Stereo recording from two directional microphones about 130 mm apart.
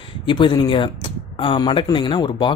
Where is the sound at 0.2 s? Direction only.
40° left (ahead or behind).